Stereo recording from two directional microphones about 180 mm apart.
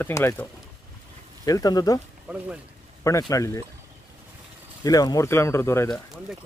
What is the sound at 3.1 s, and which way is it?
Speech, 20° left (ahead or behind).